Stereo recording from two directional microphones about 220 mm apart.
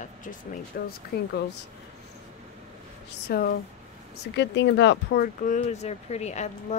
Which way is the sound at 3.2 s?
45° left (ahead or behind).